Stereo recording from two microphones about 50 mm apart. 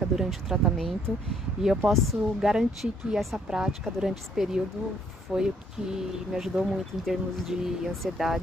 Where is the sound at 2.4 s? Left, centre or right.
Centre.